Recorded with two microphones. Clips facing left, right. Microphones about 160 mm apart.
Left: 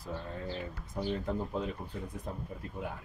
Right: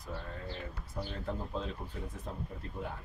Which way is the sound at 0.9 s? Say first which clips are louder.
Left 5 dB; 15° left (ahead or behind).